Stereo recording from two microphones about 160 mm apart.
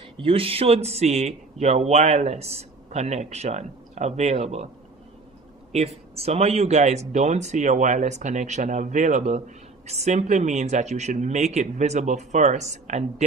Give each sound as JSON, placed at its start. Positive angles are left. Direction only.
{"t": 0.2, "sound": "speech", "side_deg": -35}
{"t": 5.7, "sound": "speech", "side_deg": -40}